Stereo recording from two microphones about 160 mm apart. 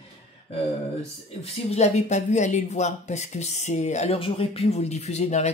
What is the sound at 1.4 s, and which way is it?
Speech, 40° left (ahead or behind).